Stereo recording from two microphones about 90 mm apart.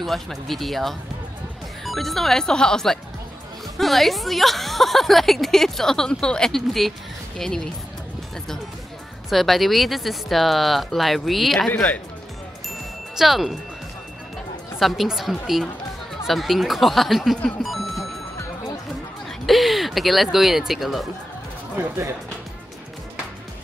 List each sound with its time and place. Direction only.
0.0 s speech: centre (ahead or behind)
9.3 s speech: centre (ahead or behind)
13.1 s speech: 5° right (ahead or behind)
14.8 s speech: centre (ahead or behind)
17.6 s music: centre (ahead or behind)
19.4 s speech: centre (ahead or behind)
21.7 s speech: 25° right (ahead or behind)